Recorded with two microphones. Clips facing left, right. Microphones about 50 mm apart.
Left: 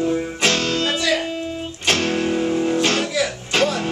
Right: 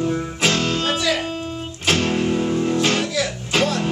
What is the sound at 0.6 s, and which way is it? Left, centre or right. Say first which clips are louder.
Music: even; centre.